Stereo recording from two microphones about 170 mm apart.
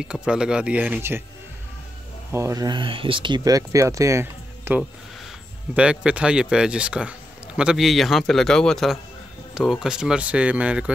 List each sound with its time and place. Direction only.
0.0 s speech: 5° right (ahead or behind)
2.3 s a man's voice: 20° right (ahead or behind)